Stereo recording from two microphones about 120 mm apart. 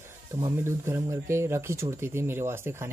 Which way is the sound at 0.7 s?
20° right (ahead or behind).